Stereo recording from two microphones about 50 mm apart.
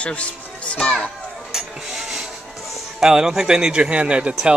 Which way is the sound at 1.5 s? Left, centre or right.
Centre.